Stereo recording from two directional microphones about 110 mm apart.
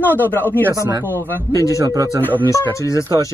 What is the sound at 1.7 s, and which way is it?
Speech, 30° right (ahead or behind).